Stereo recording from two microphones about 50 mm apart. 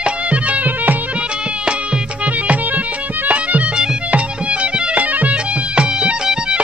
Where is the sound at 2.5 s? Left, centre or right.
Right.